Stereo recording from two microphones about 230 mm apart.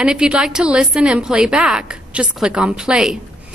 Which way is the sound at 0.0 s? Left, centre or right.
Centre.